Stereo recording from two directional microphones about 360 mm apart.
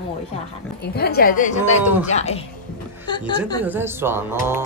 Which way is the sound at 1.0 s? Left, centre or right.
Left.